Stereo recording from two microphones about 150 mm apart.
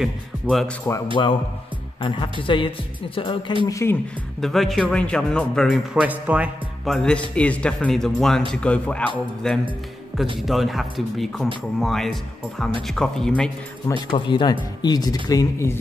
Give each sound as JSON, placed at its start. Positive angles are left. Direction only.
{"t": 0.0, "sound": "speech", "side_deg": 0}
{"t": 0.9, "sound": "speech", "side_deg": 20}
{"t": 2.0, "sound": "speech", "side_deg": 30}
{"t": 3.6, "sound": "speech", "side_deg": 20}
{"t": 4.4, "sound": "a man's voice", "side_deg": 0}
{"t": 6.0, "sound": "a man's voice", "side_deg": -10}
{"t": 13.8, "sound": "speech", "side_deg": 30}